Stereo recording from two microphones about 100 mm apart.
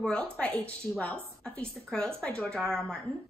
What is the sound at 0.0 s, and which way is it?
A woman's voice, 10° left (ahead or behind).